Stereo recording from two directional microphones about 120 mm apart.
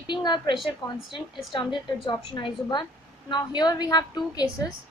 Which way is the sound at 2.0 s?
40° left (ahead or behind).